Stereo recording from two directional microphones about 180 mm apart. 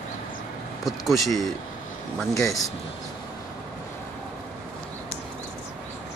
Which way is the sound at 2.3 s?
15° left (ahead or behind).